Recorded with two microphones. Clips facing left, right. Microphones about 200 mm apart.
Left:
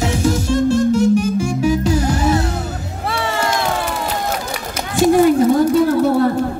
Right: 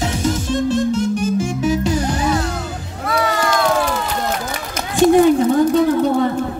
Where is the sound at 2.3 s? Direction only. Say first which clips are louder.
Left 2 dB; 25° left (ahead or behind).